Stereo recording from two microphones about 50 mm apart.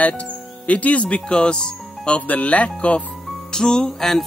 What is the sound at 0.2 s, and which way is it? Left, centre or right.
Speech, left.